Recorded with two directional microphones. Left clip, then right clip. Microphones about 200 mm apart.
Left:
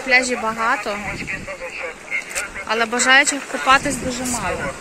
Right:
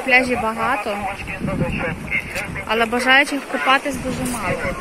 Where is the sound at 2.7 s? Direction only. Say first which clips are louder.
Even; 5° left (ahead or behind).